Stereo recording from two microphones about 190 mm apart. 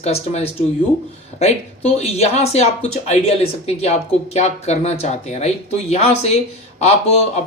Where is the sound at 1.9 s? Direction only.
35° left (ahead or behind).